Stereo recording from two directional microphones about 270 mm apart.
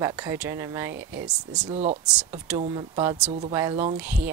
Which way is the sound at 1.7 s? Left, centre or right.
Right.